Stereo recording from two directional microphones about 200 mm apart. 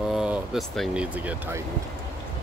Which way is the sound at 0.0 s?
5° right (ahead or behind).